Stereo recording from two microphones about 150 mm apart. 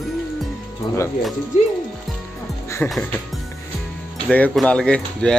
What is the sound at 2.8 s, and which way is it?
Speech, 5° left (ahead or behind).